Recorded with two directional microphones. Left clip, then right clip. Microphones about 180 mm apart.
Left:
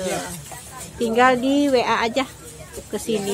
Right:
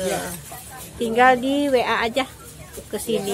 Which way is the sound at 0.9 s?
20° left (ahead or behind).